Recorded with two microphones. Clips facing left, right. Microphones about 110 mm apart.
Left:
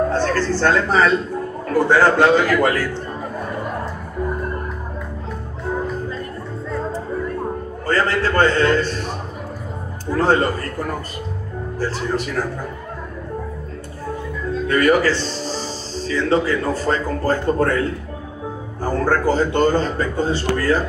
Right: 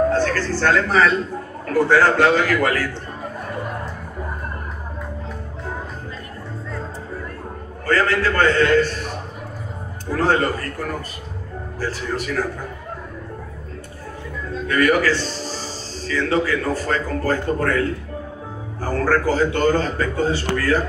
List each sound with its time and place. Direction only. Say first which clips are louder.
0.2 s a man's voice: left 2 dB; 25° left (ahead or behind)
7.8 s a man's voice: even; 25° left (ahead or behind)
10.1 s a man's voice: left 2 dB; 25° left (ahead or behind)
14.7 s a man's voice: left 1 dB; 30° left (ahead or behind)